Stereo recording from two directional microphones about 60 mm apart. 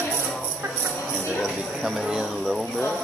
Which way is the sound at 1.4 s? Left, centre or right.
Centre.